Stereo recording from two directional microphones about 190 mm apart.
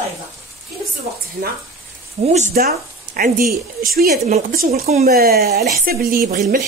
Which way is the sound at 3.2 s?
50° right (ahead or behind).